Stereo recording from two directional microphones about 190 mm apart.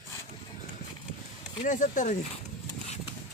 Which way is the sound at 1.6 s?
40° left (ahead or behind).